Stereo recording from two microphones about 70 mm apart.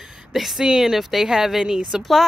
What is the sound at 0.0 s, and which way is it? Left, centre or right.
Speech, centre.